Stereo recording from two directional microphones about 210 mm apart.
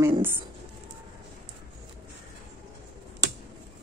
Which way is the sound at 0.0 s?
10° right (ahead or behind).